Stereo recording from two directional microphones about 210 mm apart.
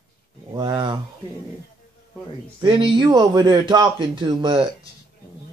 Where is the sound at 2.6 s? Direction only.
25° right (ahead or behind).